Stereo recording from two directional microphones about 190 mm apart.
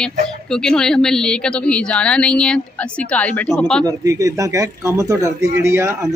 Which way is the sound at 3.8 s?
15° right (ahead or behind).